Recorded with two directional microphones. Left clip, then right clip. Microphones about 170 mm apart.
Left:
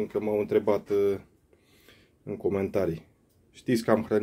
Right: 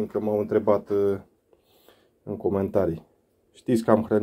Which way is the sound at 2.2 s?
5° left (ahead or behind).